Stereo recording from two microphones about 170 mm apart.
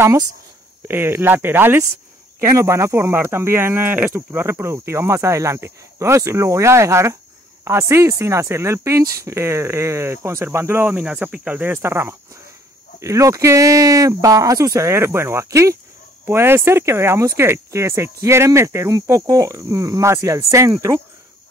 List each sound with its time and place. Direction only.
0.0 s speech: 15° right (ahead or behind)